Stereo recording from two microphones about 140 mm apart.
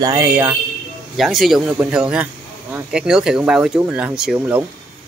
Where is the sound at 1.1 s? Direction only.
Centre (ahead or behind).